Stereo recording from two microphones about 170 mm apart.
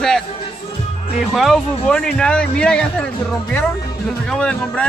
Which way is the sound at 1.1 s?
Centre (ahead or behind).